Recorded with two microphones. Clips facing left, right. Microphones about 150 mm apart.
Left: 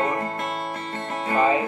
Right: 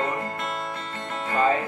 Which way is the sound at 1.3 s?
15° left (ahead or behind).